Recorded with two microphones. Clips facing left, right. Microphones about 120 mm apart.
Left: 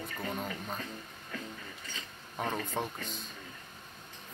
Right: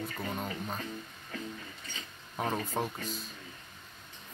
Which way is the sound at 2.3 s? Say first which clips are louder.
Right 2 dB; 5° right (ahead or behind).